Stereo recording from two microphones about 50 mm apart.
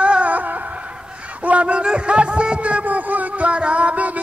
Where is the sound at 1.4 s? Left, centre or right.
Right.